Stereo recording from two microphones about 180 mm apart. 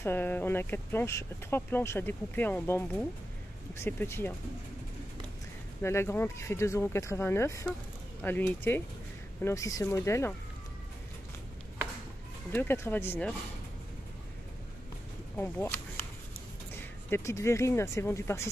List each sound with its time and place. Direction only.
0.0 s speech: 10° left (ahead or behind)
5.8 s speech: 15° left (ahead or behind)
12.5 s speech: 10° left (ahead or behind)
15.3 s a sound: 10° left (ahead or behind)
17.1 s speech: 15° left (ahead or behind)